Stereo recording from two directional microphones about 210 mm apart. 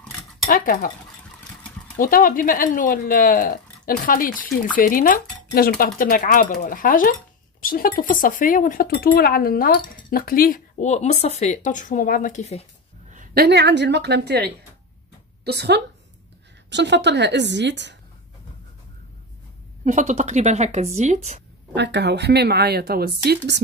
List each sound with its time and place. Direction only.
0.5 s speech: 40° left (ahead or behind)
2.0 s speech: 40° left (ahead or behind)
13.1 s a woman's voice: 40° right (ahead or behind)
19.8 s speech: 35° right (ahead or behind)
21.7 s speech: 55° right (ahead or behind)